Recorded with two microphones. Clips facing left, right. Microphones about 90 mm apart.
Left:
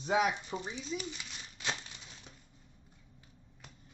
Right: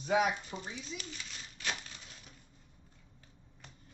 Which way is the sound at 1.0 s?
20° left (ahead or behind).